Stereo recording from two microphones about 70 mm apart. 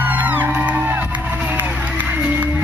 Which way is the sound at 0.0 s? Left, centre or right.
Right.